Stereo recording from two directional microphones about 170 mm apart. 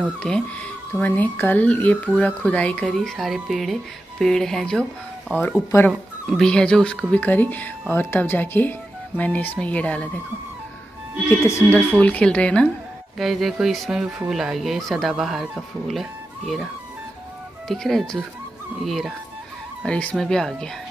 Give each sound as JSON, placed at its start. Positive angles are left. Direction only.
{"t": 0.2, "sound": "speech", "side_deg": 5}
{"t": 11.2, "sound": "speech", "side_deg": 15}
{"t": 17.6, "sound": "speech", "side_deg": 0}